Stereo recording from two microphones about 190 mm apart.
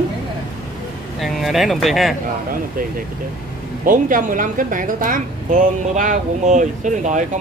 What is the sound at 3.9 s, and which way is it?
A woman's voice, 45° right (ahead or behind).